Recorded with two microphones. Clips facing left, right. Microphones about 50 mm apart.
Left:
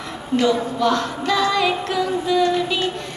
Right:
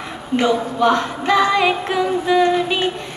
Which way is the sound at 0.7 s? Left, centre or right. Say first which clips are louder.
Right 3 dB; right.